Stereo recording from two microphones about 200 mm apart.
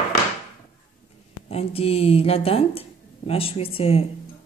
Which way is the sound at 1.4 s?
30° left (ahead or behind).